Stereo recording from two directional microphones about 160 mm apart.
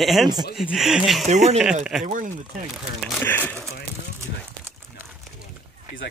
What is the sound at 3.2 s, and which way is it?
Speech, 10° left (ahead or behind).